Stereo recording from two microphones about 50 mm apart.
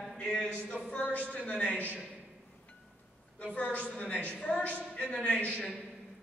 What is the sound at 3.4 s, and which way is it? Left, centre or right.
A man's voice, left.